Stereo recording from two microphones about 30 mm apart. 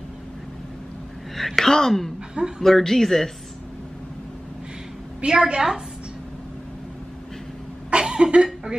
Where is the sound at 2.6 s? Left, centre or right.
Centre.